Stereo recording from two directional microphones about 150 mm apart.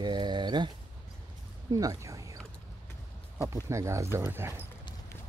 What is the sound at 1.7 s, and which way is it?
Speech, 25° right (ahead or behind).